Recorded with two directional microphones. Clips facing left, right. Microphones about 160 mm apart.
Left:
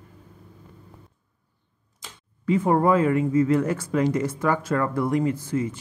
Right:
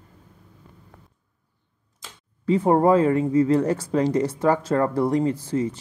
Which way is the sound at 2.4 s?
35° right (ahead or behind).